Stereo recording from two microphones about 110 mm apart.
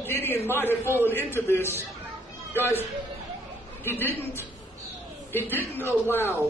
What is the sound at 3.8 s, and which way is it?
Speech, 20° left (ahead or behind).